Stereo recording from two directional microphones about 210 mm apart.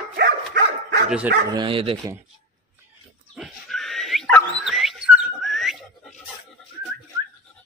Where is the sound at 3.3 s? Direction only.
Centre (ahead or behind).